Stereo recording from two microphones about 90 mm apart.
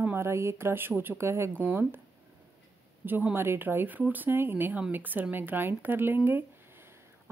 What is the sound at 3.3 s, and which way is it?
A woman's voice, 25° right (ahead or behind).